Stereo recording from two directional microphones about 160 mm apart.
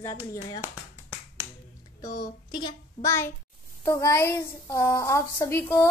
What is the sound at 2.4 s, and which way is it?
A woman's voice, 25° left (ahead or behind).